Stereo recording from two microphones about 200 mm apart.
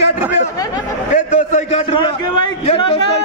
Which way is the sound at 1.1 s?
40° left (ahead or behind).